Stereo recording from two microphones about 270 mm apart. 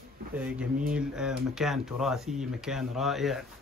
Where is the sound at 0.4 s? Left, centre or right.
Centre.